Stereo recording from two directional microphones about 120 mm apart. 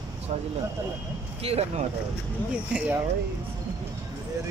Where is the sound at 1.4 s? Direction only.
60° right (ahead or behind).